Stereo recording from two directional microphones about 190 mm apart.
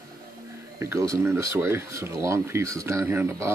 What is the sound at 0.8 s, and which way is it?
Speech, 15° right (ahead or behind).